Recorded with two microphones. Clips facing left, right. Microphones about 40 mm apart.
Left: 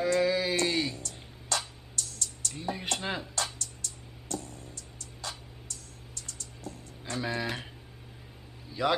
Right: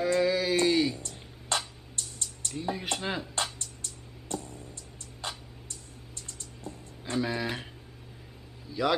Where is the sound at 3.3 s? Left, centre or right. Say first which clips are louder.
Right 1 dB; right.